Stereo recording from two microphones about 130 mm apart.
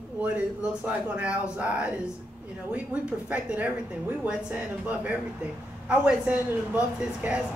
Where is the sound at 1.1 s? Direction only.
10° right (ahead or behind).